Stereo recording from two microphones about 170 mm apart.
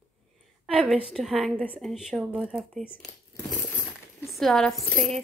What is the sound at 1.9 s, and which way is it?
A woman's voice, 5° right (ahead or behind).